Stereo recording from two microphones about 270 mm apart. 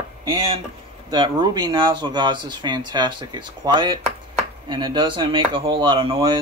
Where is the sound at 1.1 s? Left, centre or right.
Centre.